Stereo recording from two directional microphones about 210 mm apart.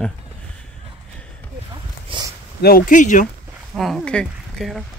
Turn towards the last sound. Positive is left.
turn(degrees=0)  # may be behind; listen again after turning